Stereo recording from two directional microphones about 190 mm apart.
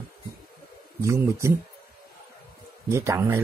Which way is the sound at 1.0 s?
15° right (ahead or behind).